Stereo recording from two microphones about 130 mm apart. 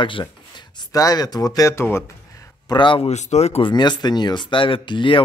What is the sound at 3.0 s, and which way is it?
Speech, 60° left (ahead or behind).